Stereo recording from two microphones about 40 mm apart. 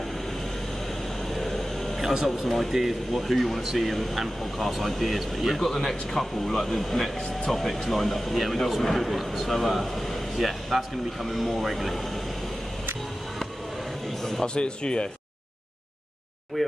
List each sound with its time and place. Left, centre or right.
1.3 s a sound: centre
2.2 s speech: centre
5.6 s speech: centre
14.4 s speech: left
16.6 s speech: centre